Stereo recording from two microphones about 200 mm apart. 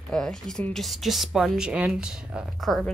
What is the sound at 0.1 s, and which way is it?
Speech, 5° left (ahead or behind).